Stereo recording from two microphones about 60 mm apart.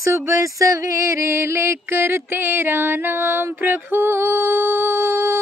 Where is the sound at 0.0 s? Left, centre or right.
Right.